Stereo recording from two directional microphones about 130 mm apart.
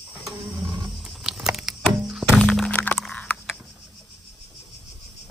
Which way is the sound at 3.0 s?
10° left (ahead or behind).